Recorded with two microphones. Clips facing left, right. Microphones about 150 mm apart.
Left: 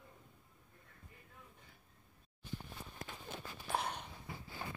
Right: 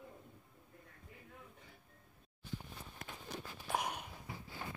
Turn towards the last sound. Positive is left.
turn(degrees=-10)  # may be behind; listen again after turning